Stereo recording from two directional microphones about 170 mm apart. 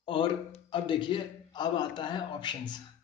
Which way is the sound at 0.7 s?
30° left (ahead or behind).